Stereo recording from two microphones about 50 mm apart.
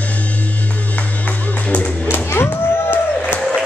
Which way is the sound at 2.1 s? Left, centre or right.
Left.